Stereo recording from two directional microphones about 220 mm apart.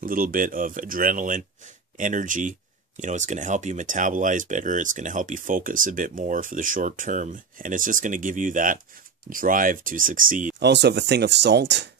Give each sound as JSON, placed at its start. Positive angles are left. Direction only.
{"t": 0.0, "sound": "speech", "side_deg": -40}
{"t": 10.6, "sound": "speech", "side_deg": -50}